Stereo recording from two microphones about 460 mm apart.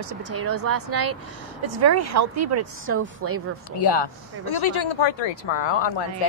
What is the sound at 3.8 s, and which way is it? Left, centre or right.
Speech, left.